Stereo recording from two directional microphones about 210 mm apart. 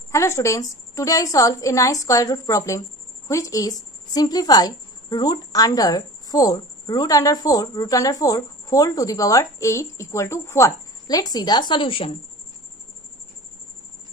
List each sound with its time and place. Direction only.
0.1 s a woman's voice: 15° left (ahead or behind)